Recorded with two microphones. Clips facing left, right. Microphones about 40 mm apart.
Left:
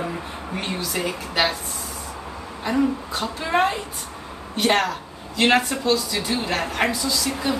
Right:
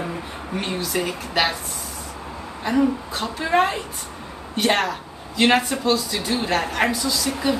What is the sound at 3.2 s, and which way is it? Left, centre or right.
Speech, centre.